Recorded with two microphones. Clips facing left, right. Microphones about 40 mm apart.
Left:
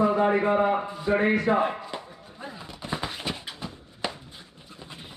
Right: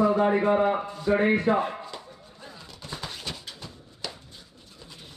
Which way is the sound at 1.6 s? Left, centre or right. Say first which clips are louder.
Left 3 dB; left.